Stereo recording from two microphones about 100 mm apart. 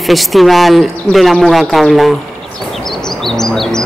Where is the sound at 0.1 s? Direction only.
Centre (ahead or behind).